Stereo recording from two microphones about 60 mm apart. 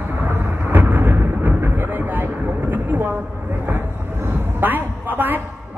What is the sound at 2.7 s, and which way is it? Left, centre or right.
Speech, right.